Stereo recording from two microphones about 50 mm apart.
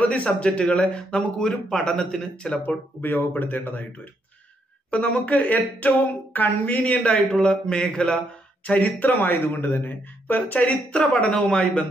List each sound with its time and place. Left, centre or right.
0.0 s a woman's voice: left
3.0 s speech: left
4.9 s a woman's voice: left
8.6 s a woman's voice: left
9.2 s speech: left
11.0 s speech: centre